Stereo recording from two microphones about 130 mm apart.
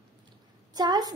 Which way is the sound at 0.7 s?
30° right (ahead or behind).